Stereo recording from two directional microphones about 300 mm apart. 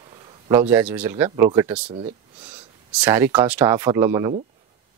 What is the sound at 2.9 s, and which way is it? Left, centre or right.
Speech, centre.